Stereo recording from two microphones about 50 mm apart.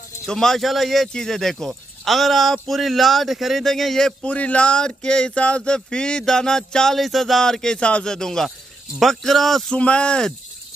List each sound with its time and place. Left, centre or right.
0.3 s speech: centre
4.2 s speech: left; by 7.0 s centre
7.0 s speech: centre
9.7 s speech: left